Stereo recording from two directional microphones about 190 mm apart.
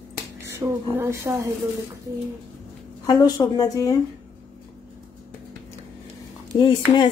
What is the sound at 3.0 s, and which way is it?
Speech, 20° left (ahead or behind).